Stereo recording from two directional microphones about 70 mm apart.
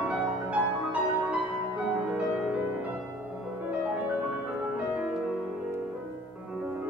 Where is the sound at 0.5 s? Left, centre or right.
Centre.